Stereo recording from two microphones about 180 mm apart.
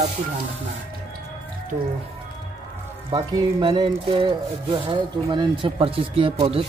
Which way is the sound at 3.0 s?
25° right (ahead or behind).